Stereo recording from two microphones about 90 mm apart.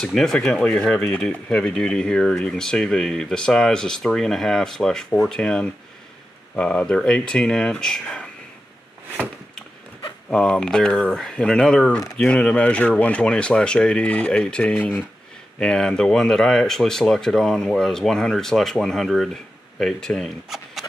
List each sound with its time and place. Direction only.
0.0 s speech: 5° left (ahead or behind)
10.3 s speech: 5° left (ahead or behind)
15.6 s speech: 5° left (ahead or behind)